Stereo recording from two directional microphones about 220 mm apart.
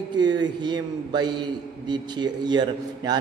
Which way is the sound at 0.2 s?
20° right (ahead or behind).